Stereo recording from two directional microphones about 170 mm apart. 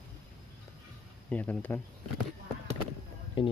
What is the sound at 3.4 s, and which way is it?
Speech, 30° left (ahead or behind).